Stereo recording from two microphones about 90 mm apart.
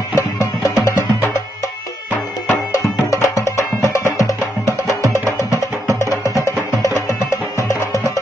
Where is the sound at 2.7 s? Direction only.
35° left (ahead or behind).